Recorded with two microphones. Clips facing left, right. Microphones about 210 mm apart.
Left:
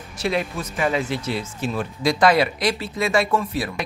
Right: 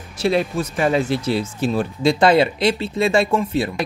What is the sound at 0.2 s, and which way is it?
Speech, 30° right (ahead or behind).